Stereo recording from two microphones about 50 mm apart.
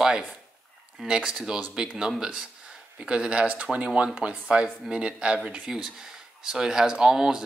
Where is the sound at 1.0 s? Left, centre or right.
Centre.